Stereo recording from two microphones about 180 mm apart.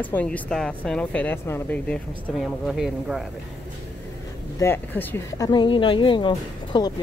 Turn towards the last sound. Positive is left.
turn(degrees=25)  # may be behind; listen again after turning